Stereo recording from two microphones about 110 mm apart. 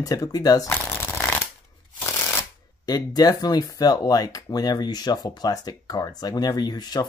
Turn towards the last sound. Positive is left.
turn(degrees=40)  # may be behind; listen again after turning